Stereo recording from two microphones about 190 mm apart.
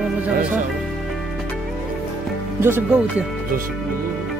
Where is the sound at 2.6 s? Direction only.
10° right (ahead or behind).